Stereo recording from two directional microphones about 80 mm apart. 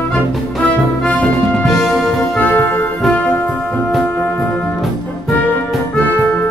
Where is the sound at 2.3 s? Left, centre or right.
Centre.